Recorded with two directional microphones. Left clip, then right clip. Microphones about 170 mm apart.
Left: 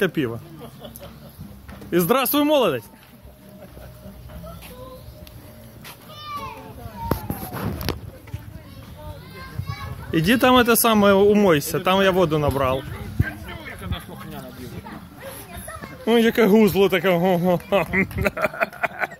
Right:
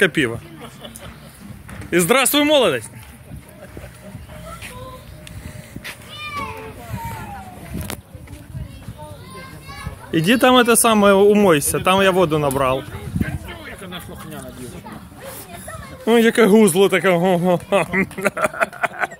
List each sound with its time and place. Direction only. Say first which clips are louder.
0.0 s speech: right 6 dB; centre (ahead or behind)
1.9 s speech: right 4 dB; 5° left (ahead or behind)
10.1 s speech: right 3 dB; centre (ahead or behind)
13.5 s a sound: right 2 dB; 55° right (ahead or behind)
16.1 s speech: right 3 dB; 5° right (ahead or behind)